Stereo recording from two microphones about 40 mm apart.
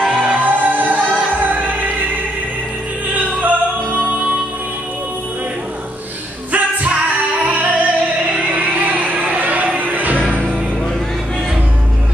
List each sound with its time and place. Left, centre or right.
0.2 s music: right
3.2 s music: right
6.5 s music: right